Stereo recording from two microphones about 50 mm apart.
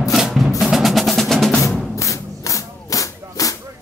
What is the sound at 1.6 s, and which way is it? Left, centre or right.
Music, left.